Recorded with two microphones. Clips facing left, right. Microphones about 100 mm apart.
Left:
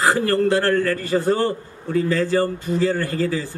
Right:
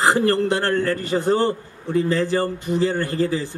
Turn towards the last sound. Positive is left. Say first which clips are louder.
# right 1 dB
turn(degrees=-20)  # may be behind; listen again after turning